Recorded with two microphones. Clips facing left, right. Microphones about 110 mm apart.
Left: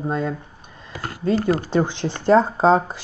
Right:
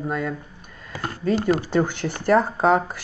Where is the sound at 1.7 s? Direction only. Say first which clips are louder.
Left 1 dB; 20° left (ahead or behind).